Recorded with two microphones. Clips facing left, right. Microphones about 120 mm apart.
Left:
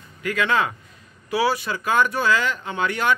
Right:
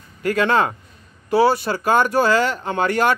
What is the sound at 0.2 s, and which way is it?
Speech, 40° right (ahead or behind).